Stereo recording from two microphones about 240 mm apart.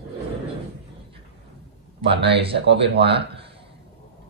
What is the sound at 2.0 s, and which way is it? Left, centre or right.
Speech, right.